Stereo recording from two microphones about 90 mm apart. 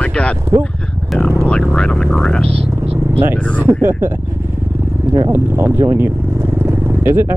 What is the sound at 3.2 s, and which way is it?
Speech, 25° right (ahead or behind).